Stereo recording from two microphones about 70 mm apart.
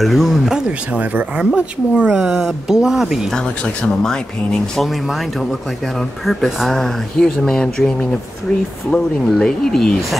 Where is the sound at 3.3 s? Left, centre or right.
Centre.